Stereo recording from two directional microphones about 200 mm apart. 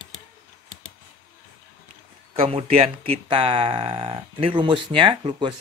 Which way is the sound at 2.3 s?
30° right (ahead or behind).